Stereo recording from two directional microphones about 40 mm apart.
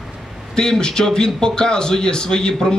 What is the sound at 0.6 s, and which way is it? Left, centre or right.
A man's voice, centre.